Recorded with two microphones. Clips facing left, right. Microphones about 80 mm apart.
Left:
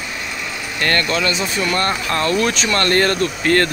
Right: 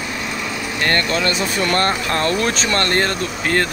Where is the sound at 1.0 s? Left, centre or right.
Right.